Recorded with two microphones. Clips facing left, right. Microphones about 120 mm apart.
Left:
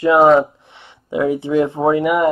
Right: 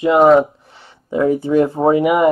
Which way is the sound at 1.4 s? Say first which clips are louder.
Right 1 dB; 5° right (ahead or behind).